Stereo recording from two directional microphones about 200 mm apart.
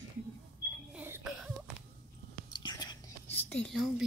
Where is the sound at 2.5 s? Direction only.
20° left (ahead or behind).